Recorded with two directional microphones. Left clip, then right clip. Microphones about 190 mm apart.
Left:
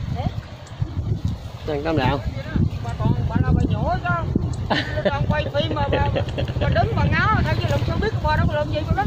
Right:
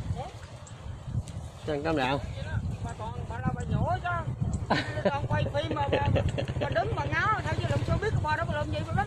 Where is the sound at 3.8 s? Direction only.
40° right (ahead or behind).